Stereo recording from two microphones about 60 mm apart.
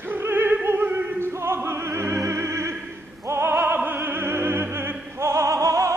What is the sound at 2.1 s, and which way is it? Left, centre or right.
Opera, right.